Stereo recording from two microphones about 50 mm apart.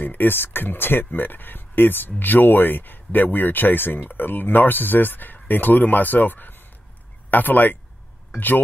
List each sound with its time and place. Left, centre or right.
0.0 s speech: left